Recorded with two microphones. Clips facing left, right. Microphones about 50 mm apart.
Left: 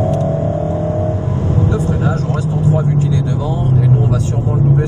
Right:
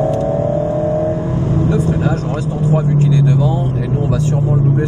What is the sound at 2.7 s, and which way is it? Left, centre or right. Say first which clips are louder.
Vehicle: right 2 dB; right.